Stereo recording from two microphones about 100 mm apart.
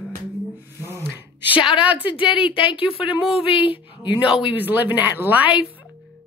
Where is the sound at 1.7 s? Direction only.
10° right (ahead or behind).